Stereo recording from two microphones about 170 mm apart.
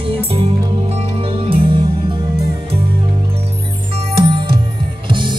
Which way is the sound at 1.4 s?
30° right (ahead or behind).